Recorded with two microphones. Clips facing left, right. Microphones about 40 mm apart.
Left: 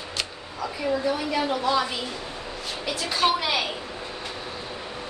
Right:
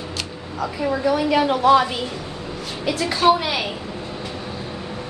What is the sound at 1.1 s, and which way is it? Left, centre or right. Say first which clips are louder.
Speech: right 7 dB; right.